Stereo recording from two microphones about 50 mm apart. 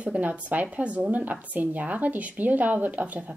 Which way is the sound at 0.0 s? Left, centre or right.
Right.